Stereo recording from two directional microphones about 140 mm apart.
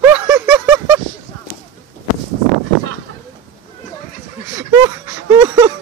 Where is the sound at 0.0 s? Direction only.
10° right (ahead or behind).